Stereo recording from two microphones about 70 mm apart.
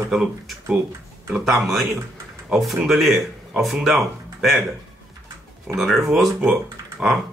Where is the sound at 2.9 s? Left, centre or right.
Centre.